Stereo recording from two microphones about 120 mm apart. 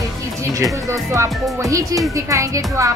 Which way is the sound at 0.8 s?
25° right (ahead or behind).